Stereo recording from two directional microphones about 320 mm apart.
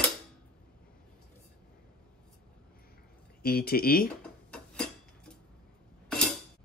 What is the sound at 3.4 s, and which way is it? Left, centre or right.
Speech, left.